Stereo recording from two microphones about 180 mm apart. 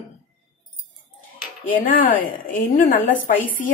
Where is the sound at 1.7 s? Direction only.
50° left (ahead or behind).